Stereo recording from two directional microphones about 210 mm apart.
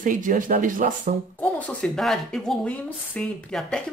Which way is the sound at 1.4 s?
5° left (ahead or behind).